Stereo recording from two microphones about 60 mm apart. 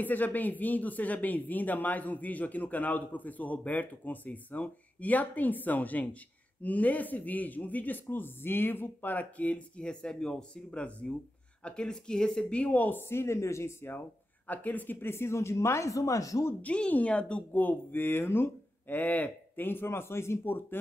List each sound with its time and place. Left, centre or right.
0.0 s speech: left
13.1 s speech: left
14.5 s speech: left
16.6 s speech: left
17.5 s speech: left